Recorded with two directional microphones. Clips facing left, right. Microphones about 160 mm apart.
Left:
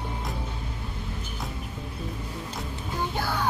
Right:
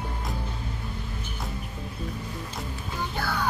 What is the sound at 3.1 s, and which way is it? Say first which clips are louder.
Music: right 1 dB; 15° left (ahead or behind).